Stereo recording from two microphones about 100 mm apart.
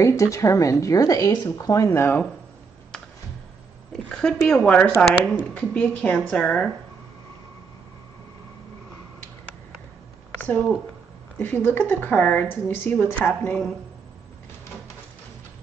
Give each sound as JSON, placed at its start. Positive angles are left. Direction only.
{"t": 0.0, "sound": "speech", "side_deg": 30}
{"t": 4.2, "sound": "speech", "side_deg": 10}
{"t": 11.3, "sound": "speech", "side_deg": 20}
{"t": 13.3, "sound": "speech", "side_deg": 10}